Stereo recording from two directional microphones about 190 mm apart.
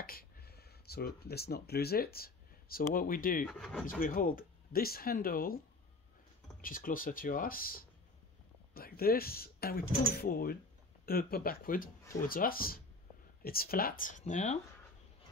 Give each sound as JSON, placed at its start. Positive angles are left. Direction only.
{"t": 0.0, "sound": "speech", "side_deg": 50}
{"t": 3.4, "sound": "speech", "side_deg": 5}
{"t": 3.8, "sound": "speech", "side_deg": 45}
{"t": 6.6, "sound": "speech", "side_deg": 45}